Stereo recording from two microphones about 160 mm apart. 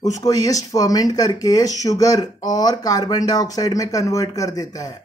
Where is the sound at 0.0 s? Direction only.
20° left (ahead or behind).